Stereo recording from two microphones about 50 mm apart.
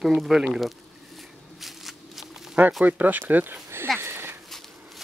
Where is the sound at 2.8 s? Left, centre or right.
Right.